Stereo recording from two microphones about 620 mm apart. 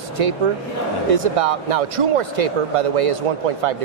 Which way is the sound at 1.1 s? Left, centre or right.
Right.